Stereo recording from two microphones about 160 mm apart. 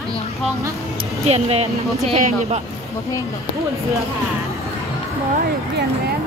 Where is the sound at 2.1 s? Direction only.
50° right (ahead or behind).